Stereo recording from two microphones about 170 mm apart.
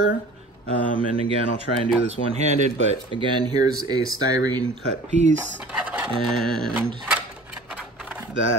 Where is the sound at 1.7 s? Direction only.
60° left (ahead or behind).